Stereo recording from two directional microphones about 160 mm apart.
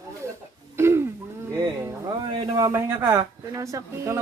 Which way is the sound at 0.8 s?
15° right (ahead or behind).